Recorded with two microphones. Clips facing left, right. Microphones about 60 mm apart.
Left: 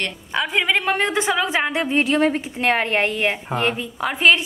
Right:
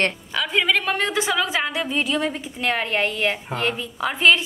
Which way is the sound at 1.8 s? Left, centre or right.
Left.